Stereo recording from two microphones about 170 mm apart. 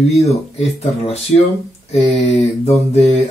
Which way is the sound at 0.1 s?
40° left (ahead or behind).